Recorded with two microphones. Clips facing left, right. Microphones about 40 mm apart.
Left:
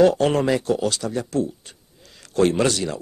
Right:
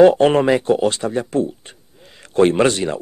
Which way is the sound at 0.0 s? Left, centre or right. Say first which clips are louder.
Right 6 dB; right.